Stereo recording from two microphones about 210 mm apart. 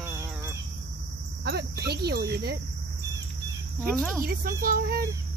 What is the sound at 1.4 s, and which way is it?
Speech, 50° right (ahead or behind).